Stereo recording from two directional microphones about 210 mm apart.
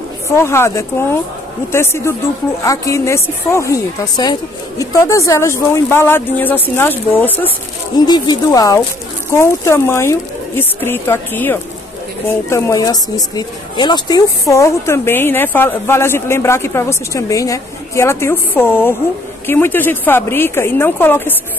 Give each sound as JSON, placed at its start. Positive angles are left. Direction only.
{"t": 0.4, "sound": "speech", "side_deg": 15}